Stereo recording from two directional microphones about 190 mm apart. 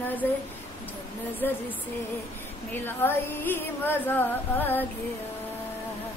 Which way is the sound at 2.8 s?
10° left (ahead or behind).